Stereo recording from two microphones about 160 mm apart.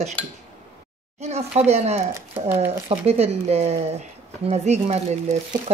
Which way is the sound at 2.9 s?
40° right (ahead or behind).